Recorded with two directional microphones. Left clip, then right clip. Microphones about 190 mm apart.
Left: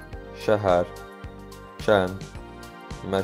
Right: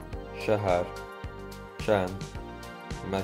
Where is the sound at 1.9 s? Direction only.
20° left (ahead or behind).